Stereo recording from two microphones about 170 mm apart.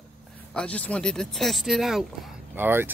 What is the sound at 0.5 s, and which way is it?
Speech, 5° left (ahead or behind).